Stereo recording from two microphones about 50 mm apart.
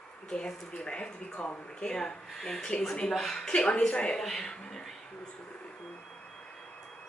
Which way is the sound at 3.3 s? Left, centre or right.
Centre.